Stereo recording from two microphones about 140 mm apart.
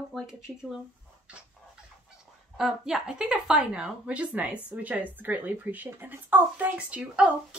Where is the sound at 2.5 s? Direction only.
5° right (ahead or behind).